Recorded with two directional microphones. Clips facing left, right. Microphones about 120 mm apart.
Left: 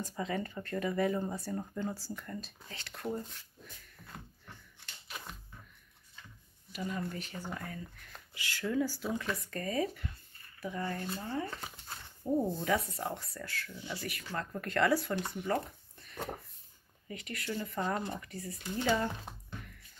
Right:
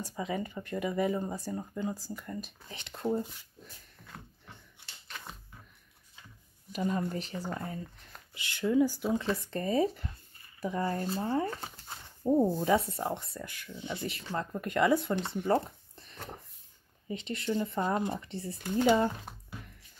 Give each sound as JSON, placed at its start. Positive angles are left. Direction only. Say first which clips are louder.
{"t": 0.0, "sound": "speech", "louder": "right 1 dB", "side_deg": -10}
{"t": 6.7, "sound": "speech", "louder": "right 7 dB", "side_deg": -45}
{"t": 7.1, "sound": "speech", "louder": "right 5 dB", "side_deg": -30}
{"t": 9.1, "sound": "speech", "louder": "right 5 dB", "side_deg": -30}